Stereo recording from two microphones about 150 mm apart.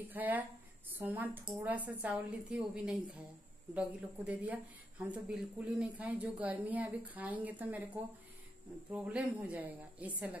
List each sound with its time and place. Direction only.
0.1 s speech: 10° right (ahead or behind)